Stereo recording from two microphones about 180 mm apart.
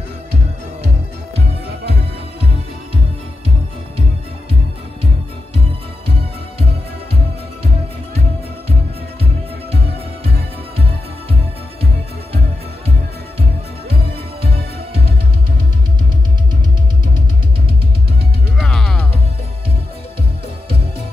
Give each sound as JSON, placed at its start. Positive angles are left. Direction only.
{"t": 18.6, "sound": "music", "side_deg": 0}